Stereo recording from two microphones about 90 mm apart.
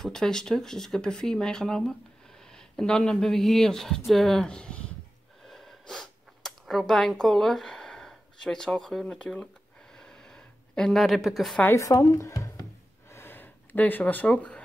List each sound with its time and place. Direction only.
0.0 s speech: 5° left (ahead or behind)
5.4 s a sound: 5° left (ahead or behind)
11.7 s speech: 35° left (ahead or behind)
13.1 s gasp: 25° left (ahead or behind)